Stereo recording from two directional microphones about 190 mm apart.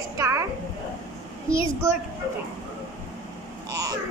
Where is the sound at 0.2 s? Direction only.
15° right (ahead or behind).